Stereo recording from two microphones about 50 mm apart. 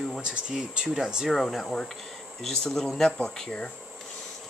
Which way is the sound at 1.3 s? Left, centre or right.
Centre.